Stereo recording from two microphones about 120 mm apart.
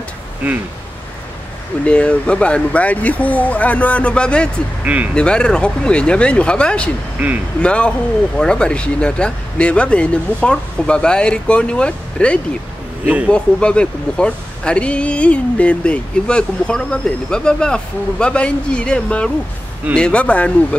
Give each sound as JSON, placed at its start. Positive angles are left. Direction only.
{"t": 1.9, "sound": "speech", "side_deg": 10}
{"t": 4.8, "sound": "a man's voice", "side_deg": -10}
{"t": 5.1, "sound": "speech", "side_deg": 10}
{"t": 7.2, "sound": "a man's voice", "side_deg": -15}
{"t": 7.6, "sound": "speech", "side_deg": 10}
{"t": 13.0, "sound": "a man's voice", "side_deg": -10}
{"t": 13.3, "sound": "speech", "side_deg": 10}